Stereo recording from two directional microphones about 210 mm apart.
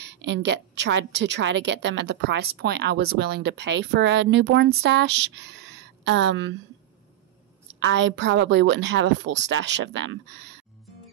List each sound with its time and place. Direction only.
0.0 s a woman's voice: 55° right (ahead or behind)
7.8 s a woman's voice: 60° right (ahead or behind)